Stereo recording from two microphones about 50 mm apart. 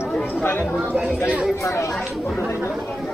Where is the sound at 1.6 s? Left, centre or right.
Left.